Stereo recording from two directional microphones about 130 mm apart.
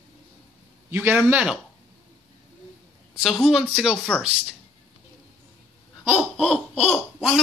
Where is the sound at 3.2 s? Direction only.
Centre (ahead or behind).